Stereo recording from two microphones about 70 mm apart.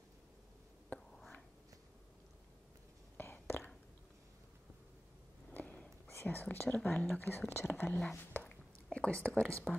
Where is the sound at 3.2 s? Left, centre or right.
Left.